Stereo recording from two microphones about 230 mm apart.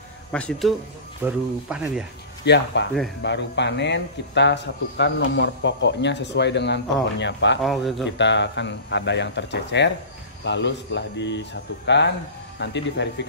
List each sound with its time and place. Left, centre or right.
0.3 s speech: centre
2.4 s speech: left
7.6 s speech: centre
8.0 s speech: left